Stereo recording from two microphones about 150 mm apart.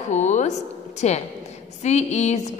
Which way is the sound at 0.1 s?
55° left (ahead or behind).